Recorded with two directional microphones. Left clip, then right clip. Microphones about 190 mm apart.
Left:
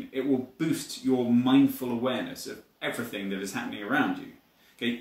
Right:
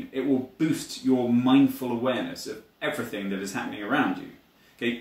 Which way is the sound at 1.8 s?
10° left (ahead or behind).